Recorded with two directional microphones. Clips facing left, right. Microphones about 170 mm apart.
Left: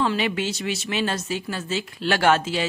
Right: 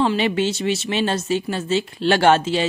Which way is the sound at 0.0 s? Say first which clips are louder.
Right 4 dB; 25° right (ahead or behind).